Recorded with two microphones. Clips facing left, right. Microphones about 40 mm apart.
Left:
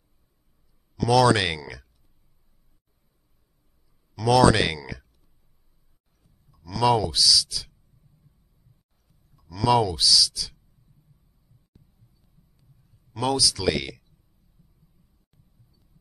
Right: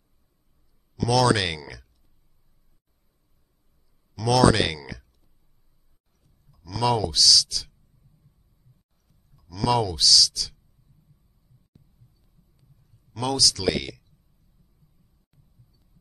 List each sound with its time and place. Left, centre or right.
1.0 s speech: centre
4.1 s speech: centre
6.2 s speech: centre
9.0 s speech: centre
12.2 s a sound: centre